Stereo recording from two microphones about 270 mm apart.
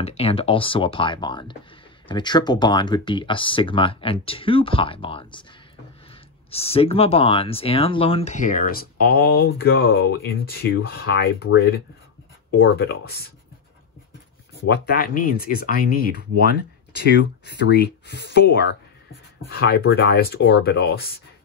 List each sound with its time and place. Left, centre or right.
0.0 s speech: left
6.5 s speech: left
12.4 s speech: left
14.7 s speech: left